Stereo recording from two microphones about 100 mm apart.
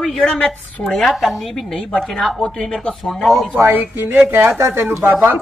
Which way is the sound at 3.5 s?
25° right (ahead or behind).